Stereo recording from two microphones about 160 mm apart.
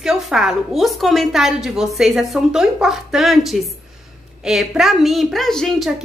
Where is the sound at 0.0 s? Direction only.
Centre (ahead or behind).